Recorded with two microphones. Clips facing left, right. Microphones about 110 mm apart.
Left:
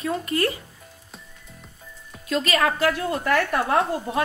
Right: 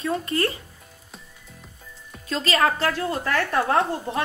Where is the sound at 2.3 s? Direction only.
30° right (ahead or behind).